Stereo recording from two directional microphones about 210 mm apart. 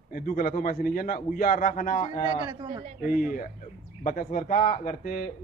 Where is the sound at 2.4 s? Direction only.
20° right (ahead or behind).